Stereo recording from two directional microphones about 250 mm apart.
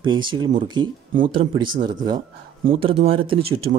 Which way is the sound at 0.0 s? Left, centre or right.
Centre.